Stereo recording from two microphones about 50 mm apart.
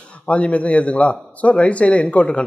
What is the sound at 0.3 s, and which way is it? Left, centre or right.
Speech, left.